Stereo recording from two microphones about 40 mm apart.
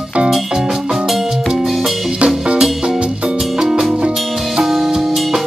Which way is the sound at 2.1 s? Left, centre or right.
Right.